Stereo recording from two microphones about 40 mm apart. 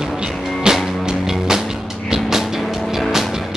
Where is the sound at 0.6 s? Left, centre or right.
Centre.